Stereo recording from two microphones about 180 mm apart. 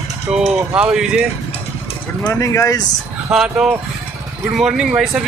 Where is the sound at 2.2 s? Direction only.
15° left (ahead or behind).